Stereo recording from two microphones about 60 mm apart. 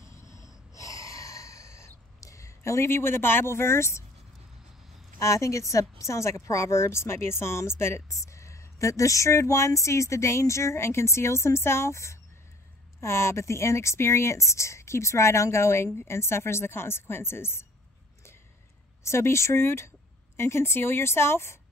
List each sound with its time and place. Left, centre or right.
0.0 s snort: left
0.7 s gasp: left
5.2 s a woman's voice: left
19.0 s speech: left